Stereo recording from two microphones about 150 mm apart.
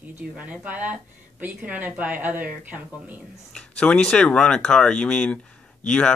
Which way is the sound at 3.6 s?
5° left (ahead or behind).